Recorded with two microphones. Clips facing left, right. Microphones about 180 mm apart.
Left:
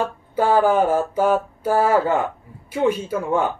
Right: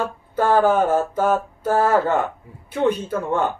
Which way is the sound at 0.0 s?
10° left (ahead or behind).